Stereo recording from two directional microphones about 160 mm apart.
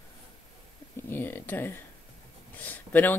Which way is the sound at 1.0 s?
15° left (ahead or behind).